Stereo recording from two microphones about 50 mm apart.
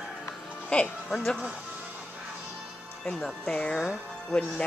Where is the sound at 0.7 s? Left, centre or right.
Left.